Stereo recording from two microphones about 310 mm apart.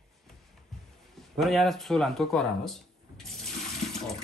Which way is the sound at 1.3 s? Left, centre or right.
Centre.